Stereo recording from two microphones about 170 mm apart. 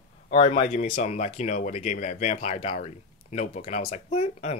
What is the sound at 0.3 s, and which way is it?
Speech, 35° left (ahead or behind).